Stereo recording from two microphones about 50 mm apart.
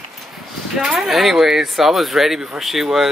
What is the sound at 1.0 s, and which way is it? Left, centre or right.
Speech, centre.